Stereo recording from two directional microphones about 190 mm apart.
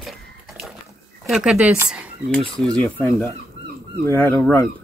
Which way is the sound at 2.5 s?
5° left (ahead or behind).